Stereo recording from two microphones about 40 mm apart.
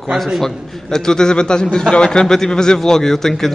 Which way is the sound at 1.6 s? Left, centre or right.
Centre.